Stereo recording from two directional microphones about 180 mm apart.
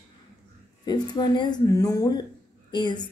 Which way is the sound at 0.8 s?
25° left (ahead or behind).